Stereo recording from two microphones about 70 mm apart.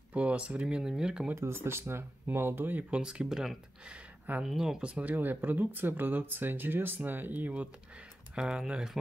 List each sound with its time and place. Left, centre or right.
0.1 s speech: centre
1.3 s speech: right
2.9 s speech: centre
5.0 s speech: right
8.4 s speech: centre